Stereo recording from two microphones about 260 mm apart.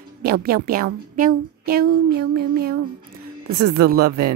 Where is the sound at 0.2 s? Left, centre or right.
Right.